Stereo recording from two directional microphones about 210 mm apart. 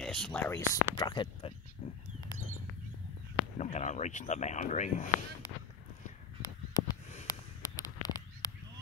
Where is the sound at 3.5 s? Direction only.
30° left (ahead or behind).